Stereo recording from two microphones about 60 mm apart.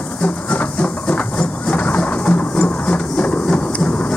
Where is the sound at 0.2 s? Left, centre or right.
Left.